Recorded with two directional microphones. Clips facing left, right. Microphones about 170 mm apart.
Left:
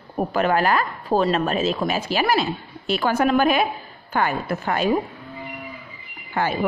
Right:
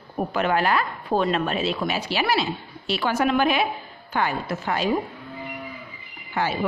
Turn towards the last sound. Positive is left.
turn(degrees=55)  # may be behind; listen again after turning